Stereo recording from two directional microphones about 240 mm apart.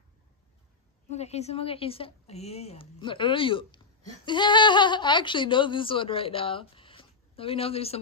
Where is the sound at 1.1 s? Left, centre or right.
Left.